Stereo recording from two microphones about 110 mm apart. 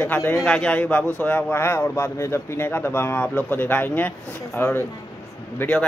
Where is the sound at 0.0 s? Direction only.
25° left (ahead or behind).